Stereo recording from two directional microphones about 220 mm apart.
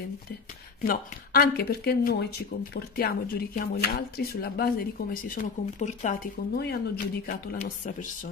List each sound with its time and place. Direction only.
0.8 s speech: 45° left (ahead or behind)